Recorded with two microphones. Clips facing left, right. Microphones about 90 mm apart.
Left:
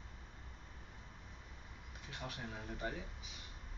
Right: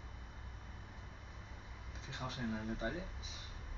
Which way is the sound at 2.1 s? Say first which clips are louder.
Right 2 dB; 25° right (ahead or behind).